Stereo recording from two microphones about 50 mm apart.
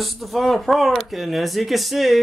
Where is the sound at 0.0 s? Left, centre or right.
Centre.